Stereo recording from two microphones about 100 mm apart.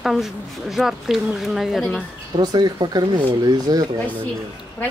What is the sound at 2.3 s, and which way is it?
Speech, 45° right (ahead or behind).